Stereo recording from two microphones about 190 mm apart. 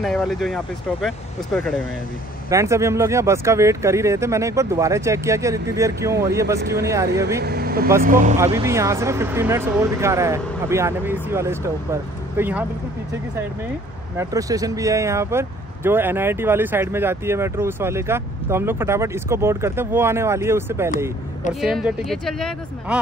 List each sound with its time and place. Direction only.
0.0 s speech: centre (ahead or behind)
2.5 s speech: 15° right (ahead or behind)
7.3 s speech: 55° right (ahead or behind)
8.5 s speech: 15° right (ahead or behind)
14.1 s speech: 20° right (ahead or behind)
21.5 s speech: centre (ahead or behind)